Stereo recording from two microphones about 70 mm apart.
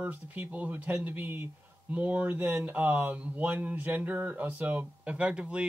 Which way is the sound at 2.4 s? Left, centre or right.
Right.